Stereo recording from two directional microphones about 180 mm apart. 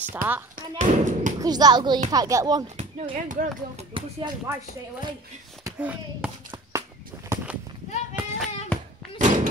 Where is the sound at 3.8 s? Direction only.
30° right (ahead or behind).